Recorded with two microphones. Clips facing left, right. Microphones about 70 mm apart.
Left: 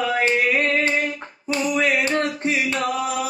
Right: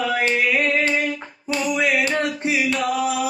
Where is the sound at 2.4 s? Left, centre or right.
Left.